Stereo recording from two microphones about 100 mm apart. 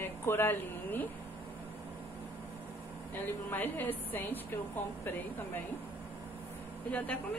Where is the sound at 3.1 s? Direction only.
15° left (ahead or behind).